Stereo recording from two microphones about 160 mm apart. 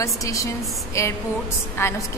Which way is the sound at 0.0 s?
20° left (ahead or behind).